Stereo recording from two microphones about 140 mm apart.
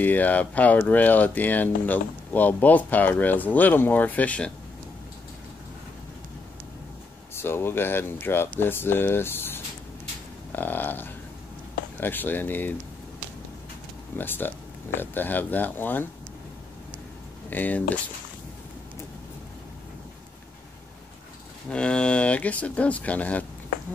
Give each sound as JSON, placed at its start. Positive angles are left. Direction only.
{"t": 0.0, "sound": "speech", "side_deg": 10}
{"t": 7.4, "sound": "speech", "side_deg": 15}
{"t": 14.1, "sound": "speech", "side_deg": 15}
{"t": 17.5, "sound": "speech", "side_deg": 10}
{"t": 21.6, "sound": "speech", "side_deg": 5}